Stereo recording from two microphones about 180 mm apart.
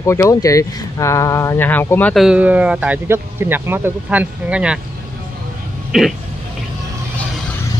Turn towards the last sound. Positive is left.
turn(degrees=0)  # may be behind; listen again after turning